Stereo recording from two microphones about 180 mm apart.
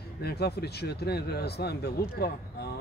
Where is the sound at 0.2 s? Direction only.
65° left (ahead or behind).